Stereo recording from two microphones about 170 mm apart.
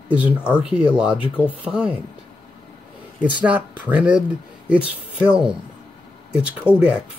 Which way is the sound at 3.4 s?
10° right (ahead or behind).